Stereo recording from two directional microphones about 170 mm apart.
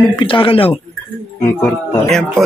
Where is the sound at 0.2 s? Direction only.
30° left (ahead or behind).